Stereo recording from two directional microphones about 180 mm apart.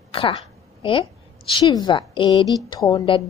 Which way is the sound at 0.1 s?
30° left (ahead or behind).